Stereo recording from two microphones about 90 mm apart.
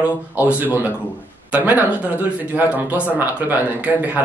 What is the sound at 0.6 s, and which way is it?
Speech, 20° right (ahead or behind).